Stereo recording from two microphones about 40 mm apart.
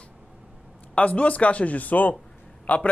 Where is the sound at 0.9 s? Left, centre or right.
Left.